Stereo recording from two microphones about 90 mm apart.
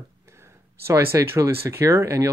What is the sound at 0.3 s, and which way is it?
Speech, 30° right (ahead or behind).